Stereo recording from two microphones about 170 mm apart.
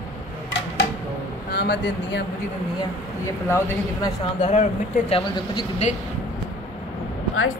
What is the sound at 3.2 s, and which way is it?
Speech, 20° left (ahead or behind).